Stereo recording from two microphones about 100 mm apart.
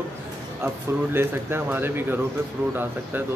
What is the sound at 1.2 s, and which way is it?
A man's voice, 20° right (ahead or behind).